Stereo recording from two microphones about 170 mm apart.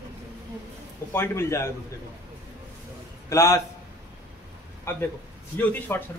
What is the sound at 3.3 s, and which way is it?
Speech, 15° left (ahead or behind).